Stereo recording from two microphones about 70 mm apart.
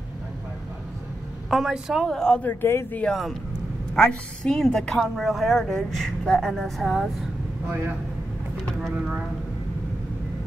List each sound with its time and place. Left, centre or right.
1.5 s a woman's voice: centre
2.0 s a woman's voice: centre
2.4 s a man's voice: left
3.1 s a woman's voice: centre
3.9 s a woman's voice: centre
8.9 s speech: centre